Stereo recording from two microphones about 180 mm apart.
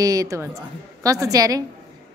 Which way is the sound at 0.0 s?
20° right (ahead or behind).